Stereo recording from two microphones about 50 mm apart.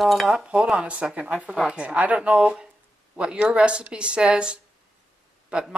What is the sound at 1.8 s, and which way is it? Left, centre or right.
Speech, right.